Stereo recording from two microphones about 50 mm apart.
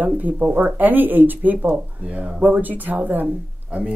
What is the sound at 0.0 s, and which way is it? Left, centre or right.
Speech, right.